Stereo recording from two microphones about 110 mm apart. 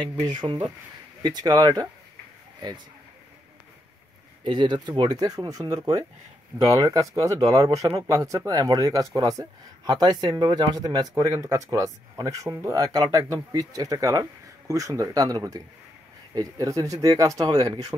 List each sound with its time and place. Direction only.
0.3 s speech: 45° right (ahead or behind)
4.5 s speech: 45° right (ahead or behind)